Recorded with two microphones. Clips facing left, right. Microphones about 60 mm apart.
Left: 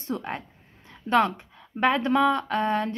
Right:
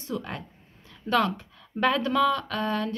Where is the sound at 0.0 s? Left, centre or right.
Left.